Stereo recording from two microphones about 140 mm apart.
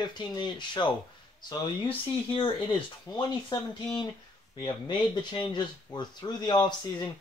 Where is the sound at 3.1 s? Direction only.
25° left (ahead or behind).